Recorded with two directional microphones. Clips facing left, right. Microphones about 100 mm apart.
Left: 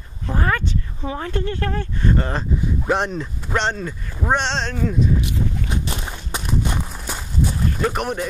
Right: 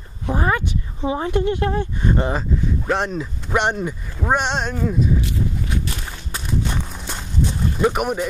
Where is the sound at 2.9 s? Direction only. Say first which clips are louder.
Left 1 dB; centre (ahead or behind).